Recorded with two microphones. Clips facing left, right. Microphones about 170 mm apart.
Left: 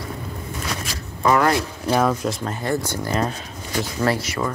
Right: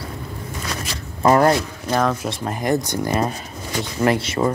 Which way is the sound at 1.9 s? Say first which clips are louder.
Left 1 dB; 5° left (ahead or behind).